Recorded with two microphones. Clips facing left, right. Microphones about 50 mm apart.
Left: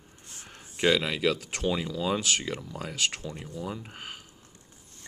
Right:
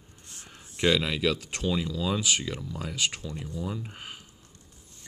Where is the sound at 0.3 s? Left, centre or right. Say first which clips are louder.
Left 1 dB; left.